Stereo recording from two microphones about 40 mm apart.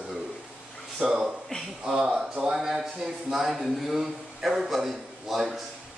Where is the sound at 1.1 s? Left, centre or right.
Right.